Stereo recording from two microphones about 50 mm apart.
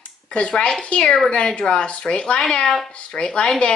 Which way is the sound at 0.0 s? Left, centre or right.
Left.